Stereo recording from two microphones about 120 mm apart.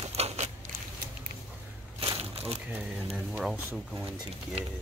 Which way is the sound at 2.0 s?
50° right (ahead or behind).